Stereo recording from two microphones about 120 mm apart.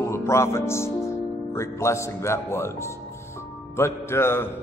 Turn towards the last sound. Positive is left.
turn(degrees=20)  # may be behind; listen again after turning